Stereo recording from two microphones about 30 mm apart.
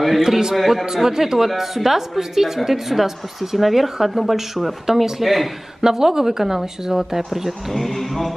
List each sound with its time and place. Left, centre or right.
0.2 s a woman's voice: centre
5.8 s speech: centre
7.2 s a woman's voice: centre
7.7 s a sound: centre